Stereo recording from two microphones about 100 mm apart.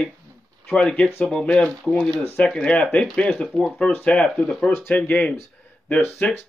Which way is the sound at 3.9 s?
15° left (ahead or behind).